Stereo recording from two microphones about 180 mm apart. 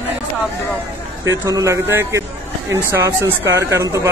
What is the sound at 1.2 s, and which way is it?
Speech, 15° right (ahead or behind).